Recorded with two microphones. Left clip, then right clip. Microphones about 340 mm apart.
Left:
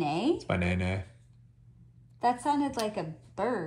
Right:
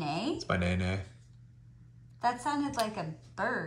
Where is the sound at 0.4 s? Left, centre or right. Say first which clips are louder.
Left 1 dB; left.